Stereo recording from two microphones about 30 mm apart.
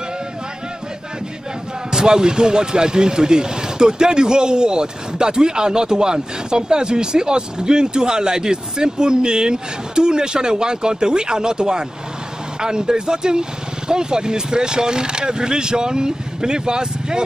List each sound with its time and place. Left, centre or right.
1.9 s speech: right